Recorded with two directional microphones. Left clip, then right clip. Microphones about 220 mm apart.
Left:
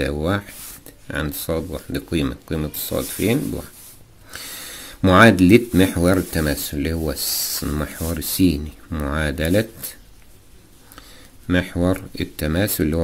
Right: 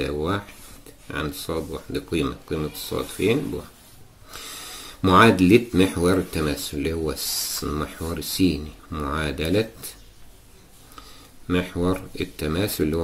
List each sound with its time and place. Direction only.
0.0 s a sound: 35° left (ahead or behind)
1.0 s speech: 35° left (ahead or behind)
11.0 s speech: 35° left (ahead or behind)